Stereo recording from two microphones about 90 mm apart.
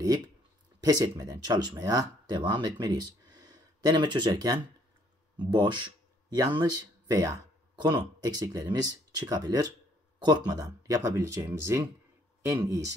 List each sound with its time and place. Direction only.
0.7 s speech: 45° right (ahead or behind)
6.3 s speech: 50° right (ahead or behind)